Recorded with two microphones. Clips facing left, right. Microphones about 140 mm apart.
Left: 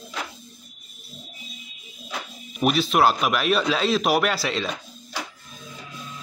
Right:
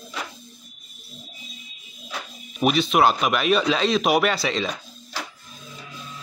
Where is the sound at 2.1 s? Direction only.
5° left (ahead or behind).